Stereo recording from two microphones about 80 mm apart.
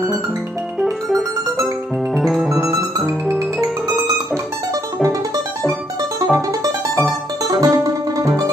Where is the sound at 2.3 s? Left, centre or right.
Centre.